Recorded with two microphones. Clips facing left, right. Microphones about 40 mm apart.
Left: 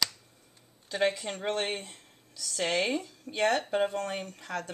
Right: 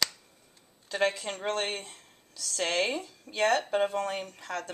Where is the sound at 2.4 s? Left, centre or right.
Centre.